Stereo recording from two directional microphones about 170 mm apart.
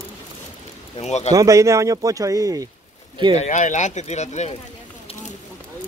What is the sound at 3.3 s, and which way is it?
Speech, 45° left (ahead or behind).